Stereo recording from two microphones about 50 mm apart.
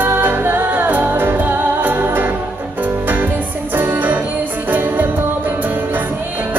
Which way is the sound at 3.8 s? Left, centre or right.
Right.